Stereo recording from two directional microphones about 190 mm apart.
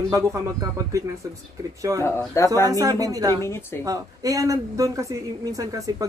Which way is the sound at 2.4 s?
15° left (ahead or behind).